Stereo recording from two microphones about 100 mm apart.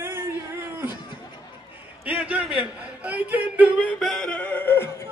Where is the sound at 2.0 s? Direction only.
15° right (ahead or behind).